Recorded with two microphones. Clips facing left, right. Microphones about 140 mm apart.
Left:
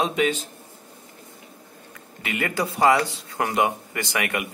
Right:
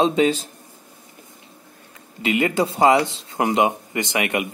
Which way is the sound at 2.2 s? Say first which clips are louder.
Right 6 dB; 20° right (ahead or behind).